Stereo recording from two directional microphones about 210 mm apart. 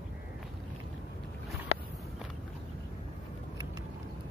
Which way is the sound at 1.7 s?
30° left (ahead or behind).